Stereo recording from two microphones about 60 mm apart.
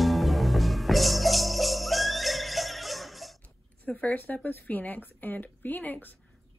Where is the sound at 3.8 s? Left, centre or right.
Left.